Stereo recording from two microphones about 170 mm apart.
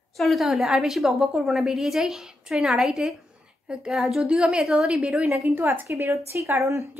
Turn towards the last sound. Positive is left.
turn(degrees=-15)  # may be behind; listen again after turning